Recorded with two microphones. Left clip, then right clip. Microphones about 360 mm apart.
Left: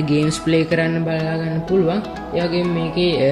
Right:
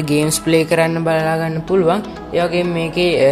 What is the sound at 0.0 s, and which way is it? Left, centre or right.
Speech, centre.